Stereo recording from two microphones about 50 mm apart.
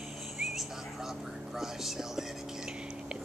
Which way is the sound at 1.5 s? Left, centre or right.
Centre.